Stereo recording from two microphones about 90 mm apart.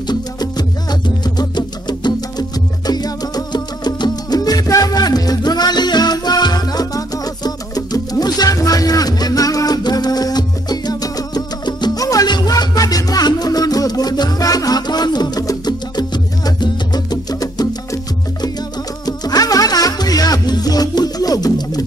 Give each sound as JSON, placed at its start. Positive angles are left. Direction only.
{"t": 0.0, "sound": "music", "side_deg": 50}
{"t": 19.0, "sound": "music", "side_deg": 45}